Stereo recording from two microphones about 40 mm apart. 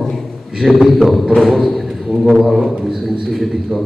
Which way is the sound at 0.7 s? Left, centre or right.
Centre.